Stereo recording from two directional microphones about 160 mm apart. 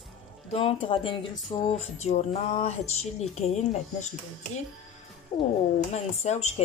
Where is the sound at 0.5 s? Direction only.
35° left (ahead or behind).